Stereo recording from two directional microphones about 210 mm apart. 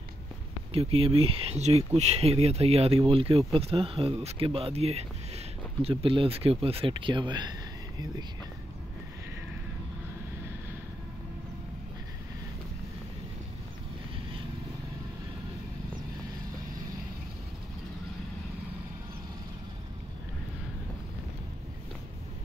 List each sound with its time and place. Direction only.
0.7 s speech: 30° right (ahead or behind)